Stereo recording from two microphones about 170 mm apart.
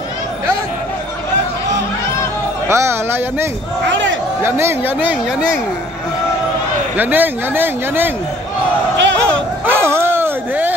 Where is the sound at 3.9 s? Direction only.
90° right.